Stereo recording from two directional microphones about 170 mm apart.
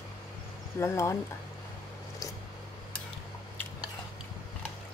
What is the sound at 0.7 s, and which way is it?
Speech, 15° left (ahead or behind).